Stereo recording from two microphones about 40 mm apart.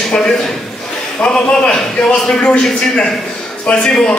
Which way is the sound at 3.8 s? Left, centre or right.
Centre.